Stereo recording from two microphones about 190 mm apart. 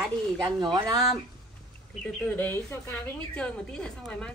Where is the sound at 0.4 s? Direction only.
25° right (ahead or behind).